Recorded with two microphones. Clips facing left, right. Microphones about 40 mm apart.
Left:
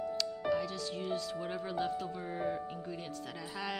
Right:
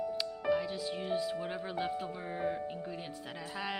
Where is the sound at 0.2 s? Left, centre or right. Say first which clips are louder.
Right 1 dB; centre.